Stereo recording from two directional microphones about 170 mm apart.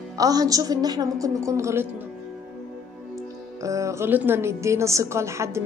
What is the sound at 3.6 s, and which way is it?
A woman's voice, 20° right (ahead or behind).